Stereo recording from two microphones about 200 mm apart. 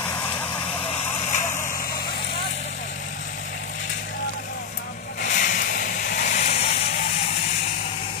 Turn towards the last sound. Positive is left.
turn(degrees=30)  # may be behind; listen again after turning